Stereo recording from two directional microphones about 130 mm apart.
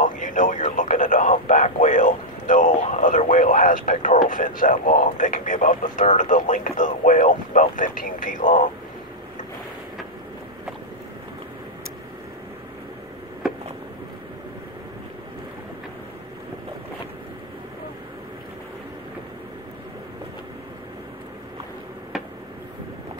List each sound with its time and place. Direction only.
0.0 s a sound: 90° left
0.7 s radio: 85° left
1.5 s speech: 70° left (ahead or behind); by 8.6 s 90° left